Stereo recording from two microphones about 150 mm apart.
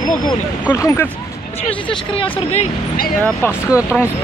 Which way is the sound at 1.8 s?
35° left (ahead or behind).